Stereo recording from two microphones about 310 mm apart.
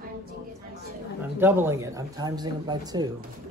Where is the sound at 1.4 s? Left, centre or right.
Centre.